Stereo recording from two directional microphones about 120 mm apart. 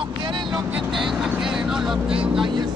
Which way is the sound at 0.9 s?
5° right (ahead or behind).